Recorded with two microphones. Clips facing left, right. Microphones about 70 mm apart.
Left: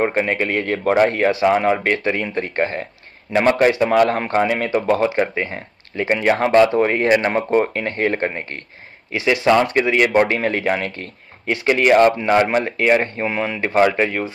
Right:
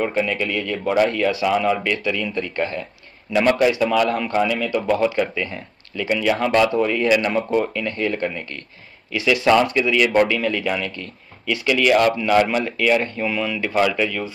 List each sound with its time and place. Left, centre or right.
0.0 s a man's voice: left
6.8 s a man's voice: left